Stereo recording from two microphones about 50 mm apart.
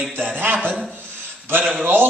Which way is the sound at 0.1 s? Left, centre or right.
Right.